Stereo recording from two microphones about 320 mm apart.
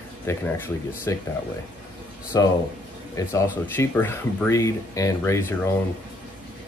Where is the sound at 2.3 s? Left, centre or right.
Centre.